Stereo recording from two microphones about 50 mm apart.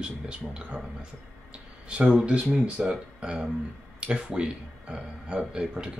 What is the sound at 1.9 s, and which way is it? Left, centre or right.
Speech, centre.